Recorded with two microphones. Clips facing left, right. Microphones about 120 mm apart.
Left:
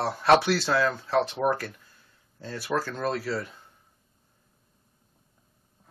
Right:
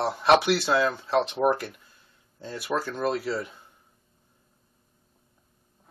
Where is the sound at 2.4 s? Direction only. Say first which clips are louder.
Even; 15° right (ahead or behind).